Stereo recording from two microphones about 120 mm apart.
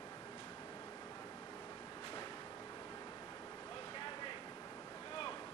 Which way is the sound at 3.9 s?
45° left (ahead or behind).